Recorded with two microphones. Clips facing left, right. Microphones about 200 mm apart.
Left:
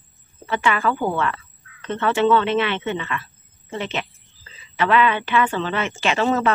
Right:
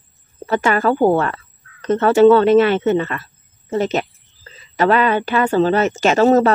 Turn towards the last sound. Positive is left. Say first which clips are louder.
# right 8 dB
turn(degrees=-40)  # may be behind; listen again after turning